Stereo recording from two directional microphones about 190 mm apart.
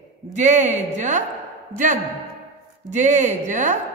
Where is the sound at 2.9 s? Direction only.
40° right (ahead or behind).